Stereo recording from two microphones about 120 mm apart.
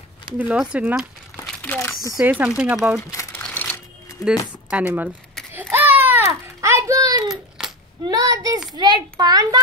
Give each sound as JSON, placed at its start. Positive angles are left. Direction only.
{"t": 0.4, "sound": "speech", "side_deg": -10}
{"t": 1.6, "sound": "speech", "side_deg": 15}
{"t": 2.1, "sound": "speech", "side_deg": -15}
{"t": 3.3, "sound": "a sound", "side_deg": 10}
{"t": 4.6, "sound": "speech", "side_deg": -15}
{"t": 5.5, "sound": "a sound", "side_deg": -15}
{"t": 7.2, "sound": "babbling", "side_deg": -5}
{"t": 8.0, "sound": "a child's voice", "side_deg": -30}